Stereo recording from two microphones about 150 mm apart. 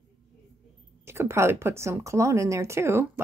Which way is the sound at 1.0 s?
15° right (ahead or behind).